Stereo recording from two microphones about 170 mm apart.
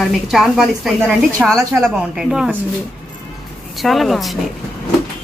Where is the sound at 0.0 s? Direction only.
Centre (ahead or behind).